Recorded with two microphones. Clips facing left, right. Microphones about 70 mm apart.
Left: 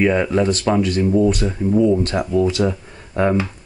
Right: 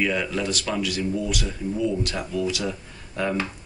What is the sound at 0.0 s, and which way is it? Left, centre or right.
Speech, left.